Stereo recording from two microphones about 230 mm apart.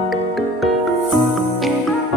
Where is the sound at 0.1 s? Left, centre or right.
Centre.